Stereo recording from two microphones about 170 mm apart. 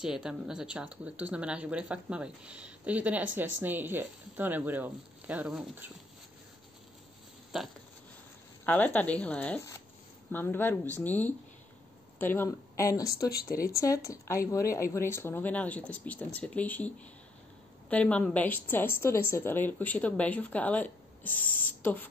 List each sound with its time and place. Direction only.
0.0 s speech: 5° right (ahead or behind)
7.5 s a sound: centre (ahead or behind)
8.6 s a woman's voice: 10° left (ahead or behind)